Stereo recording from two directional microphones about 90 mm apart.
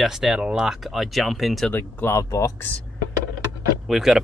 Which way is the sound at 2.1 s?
40° left (ahead or behind).